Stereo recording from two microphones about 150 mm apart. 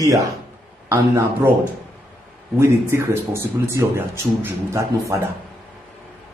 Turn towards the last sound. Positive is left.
turn(degrees=-20)  # may be behind; listen again after turning